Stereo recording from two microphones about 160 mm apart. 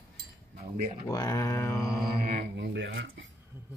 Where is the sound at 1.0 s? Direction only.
25° left (ahead or behind).